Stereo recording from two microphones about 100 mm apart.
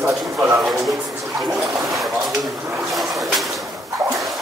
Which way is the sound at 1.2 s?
Centre (ahead or behind).